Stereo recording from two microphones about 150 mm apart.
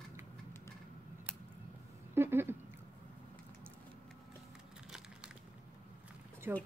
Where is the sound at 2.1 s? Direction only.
15° right (ahead or behind).